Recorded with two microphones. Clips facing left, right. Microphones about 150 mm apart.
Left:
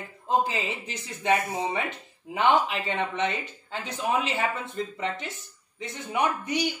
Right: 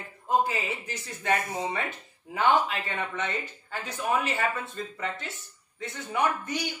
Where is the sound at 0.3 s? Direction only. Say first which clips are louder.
Even; 20° left (ahead or behind).